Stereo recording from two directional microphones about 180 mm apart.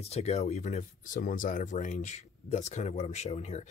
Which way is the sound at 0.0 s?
35° left (ahead or behind).